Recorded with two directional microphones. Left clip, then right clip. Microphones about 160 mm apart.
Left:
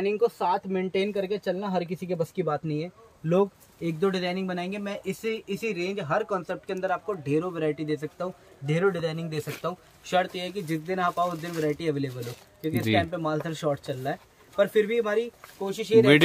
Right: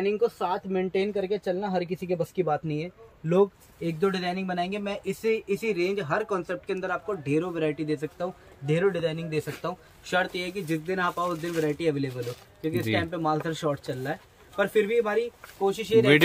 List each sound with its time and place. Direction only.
0.0 s speech: 35° left (ahead or behind); by 11.9 s centre (ahead or behind)
11.9 s speech: 10° left (ahead or behind)
12.8 s speech: 25° left (ahead or behind)
13.1 s speech: 10° left (ahead or behind)